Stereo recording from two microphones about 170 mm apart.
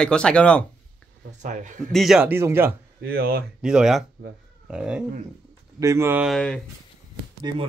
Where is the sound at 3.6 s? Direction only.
5° right (ahead or behind).